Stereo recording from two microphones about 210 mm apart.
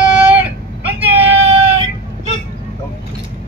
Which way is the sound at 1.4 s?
30° right (ahead or behind).